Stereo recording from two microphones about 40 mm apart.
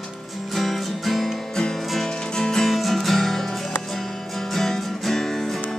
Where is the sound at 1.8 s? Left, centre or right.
Centre.